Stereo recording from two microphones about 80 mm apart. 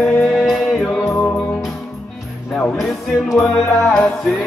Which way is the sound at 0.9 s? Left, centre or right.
Left.